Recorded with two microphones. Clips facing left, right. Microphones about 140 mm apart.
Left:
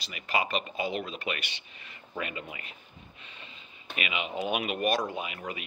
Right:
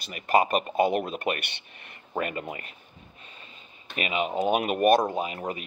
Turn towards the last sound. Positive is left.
turn(degrees=-40)  # may be behind; listen again after turning